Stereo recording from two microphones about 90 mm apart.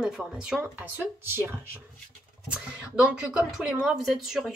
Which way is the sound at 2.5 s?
15° right (ahead or behind).